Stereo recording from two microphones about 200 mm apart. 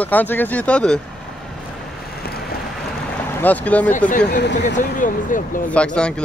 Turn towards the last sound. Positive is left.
turn(degrees=5)  # may be behind; listen again after turning